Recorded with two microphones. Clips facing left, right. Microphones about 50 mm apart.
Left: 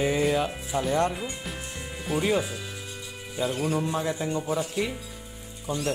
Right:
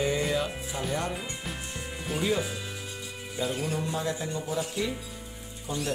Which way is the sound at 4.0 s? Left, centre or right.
Left.